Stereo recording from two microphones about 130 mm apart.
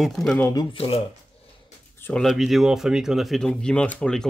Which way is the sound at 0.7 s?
50° left (ahead or behind).